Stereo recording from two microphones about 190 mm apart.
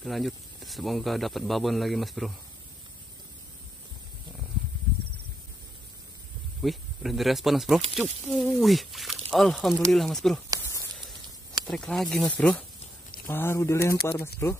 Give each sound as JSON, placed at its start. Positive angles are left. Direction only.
{"t": 0.0, "sound": "speech", "side_deg": 0}
{"t": 6.6, "sound": "speech", "side_deg": 0}
{"t": 10.6, "sound": "a sound", "side_deg": 15}
{"t": 11.7, "sound": "speech", "side_deg": 5}